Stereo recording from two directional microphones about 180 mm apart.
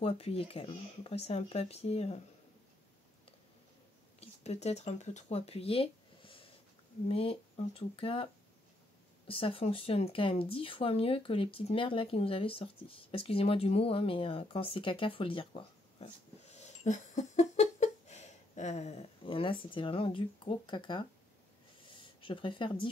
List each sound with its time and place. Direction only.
0.0 s speech: 35° left (ahead or behind)
4.2 s speech: 35° left (ahead or behind)
9.3 s speech: 30° left (ahead or behind)
21.8 s a sound: 30° left (ahead or behind)